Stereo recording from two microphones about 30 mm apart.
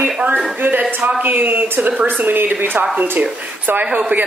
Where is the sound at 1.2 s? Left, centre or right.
Right.